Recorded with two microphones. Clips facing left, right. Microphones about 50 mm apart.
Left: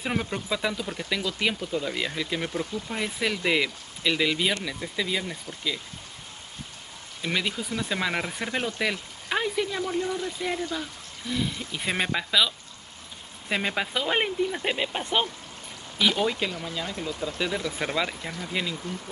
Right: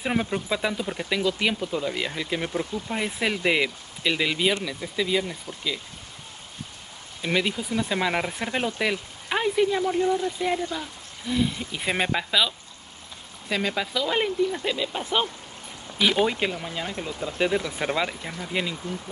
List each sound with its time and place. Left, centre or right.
0.0 s speech: centre
7.2 s speech: centre
13.5 s speech: centre
16.2 s speech: right